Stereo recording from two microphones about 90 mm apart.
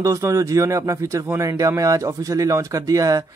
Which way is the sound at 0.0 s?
35° right (ahead or behind).